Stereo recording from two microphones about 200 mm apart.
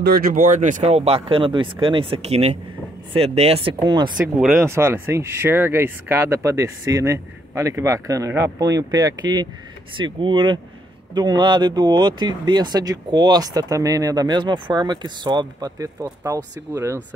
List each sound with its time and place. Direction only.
0.0 s speech: 50° right (ahead or behind); by 4.1 s 20° right (ahead or behind)
4.4 s speech: 10° right (ahead or behind)